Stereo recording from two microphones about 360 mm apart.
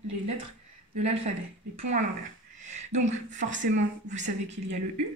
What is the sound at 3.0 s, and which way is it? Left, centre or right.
Speech, centre.